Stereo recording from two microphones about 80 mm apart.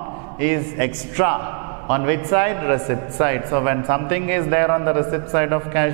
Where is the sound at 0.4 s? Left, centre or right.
Centre.